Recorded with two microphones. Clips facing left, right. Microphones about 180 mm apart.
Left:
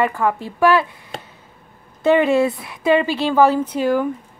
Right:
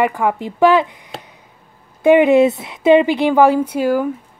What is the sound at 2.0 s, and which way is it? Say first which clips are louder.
Speech: right 5 dB; 15° right (ahead or behind).